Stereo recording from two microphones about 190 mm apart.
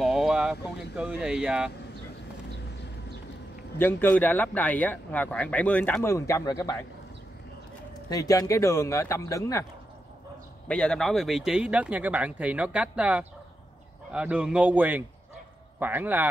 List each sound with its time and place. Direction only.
0.0 s speech: centre (ahead or behind)
3.7 s speech: 10° left (ahead or behind)
8.1 s speech: 20° left (ahead or behind)
10.7 s speech: 5° left (ahead or behind)